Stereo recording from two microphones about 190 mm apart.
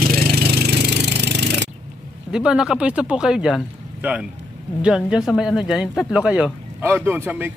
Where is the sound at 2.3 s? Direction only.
5° right (ahead or behind).